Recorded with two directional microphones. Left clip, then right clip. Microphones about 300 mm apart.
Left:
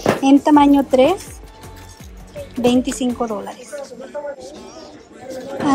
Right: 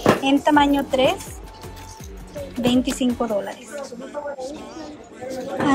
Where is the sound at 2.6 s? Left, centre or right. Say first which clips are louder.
Left 4 dB; centre.